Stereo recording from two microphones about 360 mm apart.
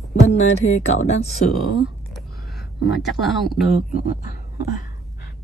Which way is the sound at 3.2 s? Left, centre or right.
Centre.